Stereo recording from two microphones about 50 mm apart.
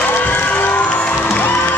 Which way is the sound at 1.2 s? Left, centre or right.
Left.